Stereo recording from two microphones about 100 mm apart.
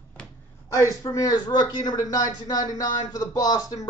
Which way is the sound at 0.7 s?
35° left (ahead or behind).